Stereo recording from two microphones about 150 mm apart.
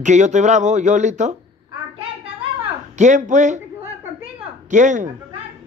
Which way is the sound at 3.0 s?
55° right (ahead or behind).